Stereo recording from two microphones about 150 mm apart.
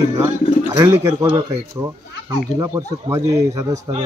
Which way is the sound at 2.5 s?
20° right (ahead or behind).